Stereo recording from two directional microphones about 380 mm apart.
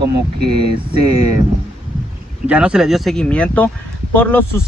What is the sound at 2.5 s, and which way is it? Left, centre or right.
Speech, centre.